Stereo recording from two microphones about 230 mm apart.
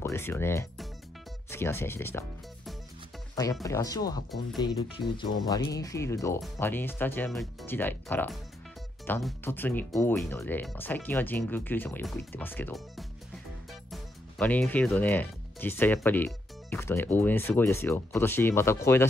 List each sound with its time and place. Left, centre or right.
0.0 s speech: centre
3.6 s speech: centre